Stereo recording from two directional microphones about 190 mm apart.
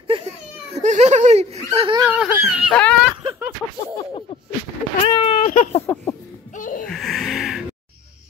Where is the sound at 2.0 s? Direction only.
10° right (ahead or behind).